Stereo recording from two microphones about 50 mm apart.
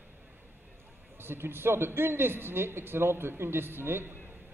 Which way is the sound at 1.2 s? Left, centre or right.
Right.